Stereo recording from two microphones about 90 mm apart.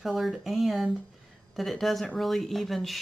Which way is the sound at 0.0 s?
Centre (ahead or behind).